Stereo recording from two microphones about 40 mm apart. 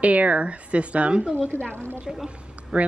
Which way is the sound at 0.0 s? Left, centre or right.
Right.